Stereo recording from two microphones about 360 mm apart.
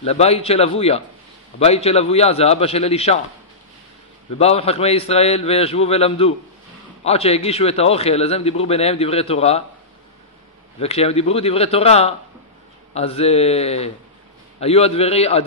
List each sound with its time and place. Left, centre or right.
0.0 s a man's voice: centre
4.4 s a man's voice: centre
10.8 s a man's voice: centre